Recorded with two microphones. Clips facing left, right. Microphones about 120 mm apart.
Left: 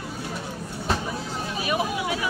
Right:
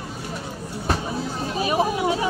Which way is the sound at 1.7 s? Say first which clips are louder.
Right 5 dB; 30° right (ahead or behind).